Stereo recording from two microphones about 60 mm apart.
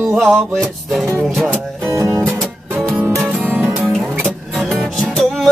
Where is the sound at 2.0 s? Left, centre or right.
Right.